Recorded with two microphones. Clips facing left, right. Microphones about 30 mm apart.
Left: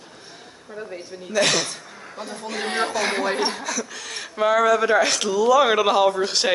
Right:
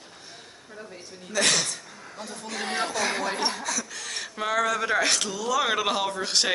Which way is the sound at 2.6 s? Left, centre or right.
Left.